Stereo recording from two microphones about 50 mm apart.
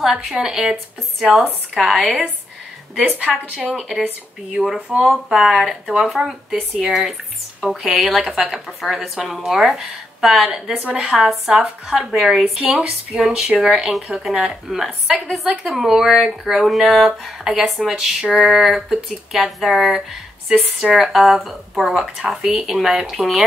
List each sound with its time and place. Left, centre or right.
0.0 s speech: centre
2.0 s a woman's voice: centre
3.3 s speech: centre
4.5 s speech: centre
7.9 s speech: centre